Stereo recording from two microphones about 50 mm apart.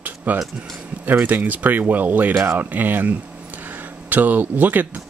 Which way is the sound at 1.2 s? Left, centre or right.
Right.